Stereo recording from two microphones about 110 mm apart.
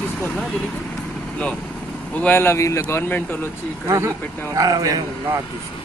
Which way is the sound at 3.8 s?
25° right (ahead or behind).